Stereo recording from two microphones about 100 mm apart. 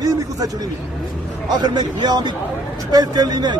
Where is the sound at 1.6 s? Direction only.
45° right (ahead or behind).